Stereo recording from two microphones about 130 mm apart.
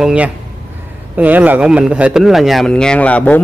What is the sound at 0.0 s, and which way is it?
Speech, 10° right (ahead or behind).